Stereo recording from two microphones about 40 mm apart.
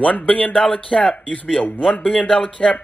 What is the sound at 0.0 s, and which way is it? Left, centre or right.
Speech, left.